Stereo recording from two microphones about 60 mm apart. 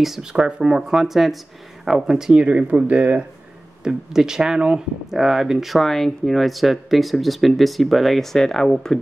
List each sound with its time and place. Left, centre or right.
0.0 s speech: centre
2.4 s speech: right
3.8 s speech: centre